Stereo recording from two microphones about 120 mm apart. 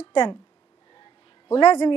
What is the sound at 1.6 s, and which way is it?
Speech, 35° left (ahead or behind).